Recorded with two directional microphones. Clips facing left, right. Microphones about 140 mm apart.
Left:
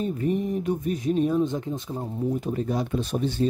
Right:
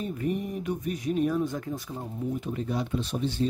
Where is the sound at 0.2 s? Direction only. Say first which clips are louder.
Left 3 dB; 35° left (ahead or behind).